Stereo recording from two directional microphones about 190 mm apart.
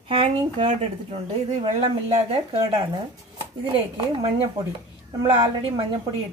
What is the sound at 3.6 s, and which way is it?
Speech, 30° right (ahead or behind).